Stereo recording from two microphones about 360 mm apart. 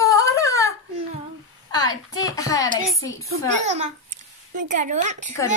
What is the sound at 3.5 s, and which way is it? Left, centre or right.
Speech, right.